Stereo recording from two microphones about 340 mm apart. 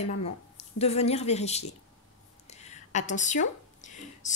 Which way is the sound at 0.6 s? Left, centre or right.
Centre.